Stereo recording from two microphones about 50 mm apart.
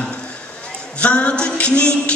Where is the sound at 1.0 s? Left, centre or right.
Left.